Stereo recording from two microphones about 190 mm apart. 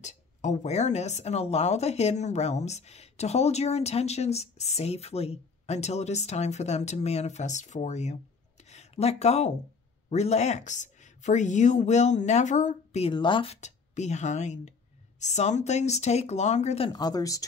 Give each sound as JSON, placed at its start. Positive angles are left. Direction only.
{"t": 0.0, "sound": "speech", "side_deg": 40}
{"t": 13.1, "sound": "speech", "side_deg": 25}